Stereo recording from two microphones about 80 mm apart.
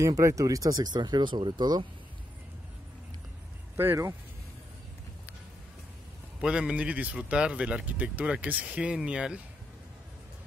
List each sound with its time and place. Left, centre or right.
0.0 s speech: right
3.7 s speech: right
6.4 s speech: centre